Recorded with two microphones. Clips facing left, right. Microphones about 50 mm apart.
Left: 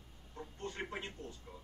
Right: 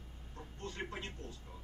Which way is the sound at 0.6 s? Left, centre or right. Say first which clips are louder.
Left 1 dB; left.